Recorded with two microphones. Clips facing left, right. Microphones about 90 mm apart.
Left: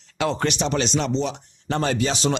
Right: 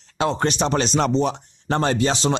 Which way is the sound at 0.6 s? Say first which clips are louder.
Right 3 dB; 40° right (ahead or behind).